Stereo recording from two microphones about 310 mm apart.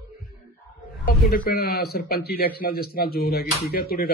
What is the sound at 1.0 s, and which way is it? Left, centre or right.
Speech, left.